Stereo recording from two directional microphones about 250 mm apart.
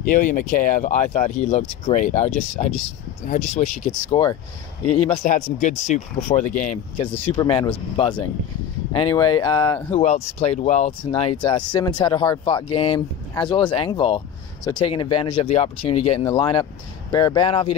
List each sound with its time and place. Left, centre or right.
0.0 s speech: left
4.1 s speech: centre
5.0 s speech: left